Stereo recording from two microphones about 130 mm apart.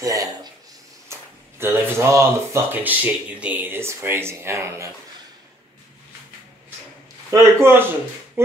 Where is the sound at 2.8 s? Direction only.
10° right (ahead or behind).